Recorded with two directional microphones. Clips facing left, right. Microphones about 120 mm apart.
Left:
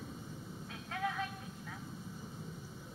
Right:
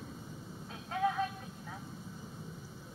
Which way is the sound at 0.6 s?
35° right (ahead or behind).